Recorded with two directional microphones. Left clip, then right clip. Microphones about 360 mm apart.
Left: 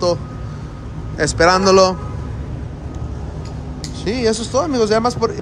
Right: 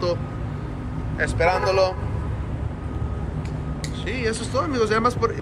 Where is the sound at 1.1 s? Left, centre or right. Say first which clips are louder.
Left 7 dB; left.